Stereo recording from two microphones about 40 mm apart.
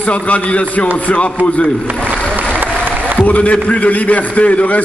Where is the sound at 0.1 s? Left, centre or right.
Left.